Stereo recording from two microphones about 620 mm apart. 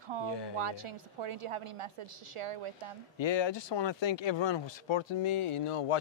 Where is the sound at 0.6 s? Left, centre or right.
Right.